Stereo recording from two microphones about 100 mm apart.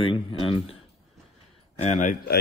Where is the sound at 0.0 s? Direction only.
60° left (ahead or behind).